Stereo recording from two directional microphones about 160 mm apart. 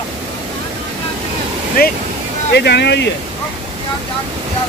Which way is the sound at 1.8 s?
65° left (ahead or behind).